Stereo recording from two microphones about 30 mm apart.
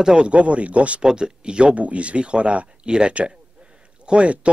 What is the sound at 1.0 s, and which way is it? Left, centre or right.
Speech, right.